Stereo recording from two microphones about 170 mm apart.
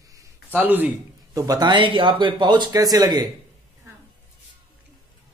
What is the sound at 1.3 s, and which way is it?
Speech, 20° right (ahead or behind).